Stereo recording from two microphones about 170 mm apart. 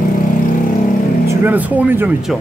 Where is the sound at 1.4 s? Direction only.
10° right (ahead or behind).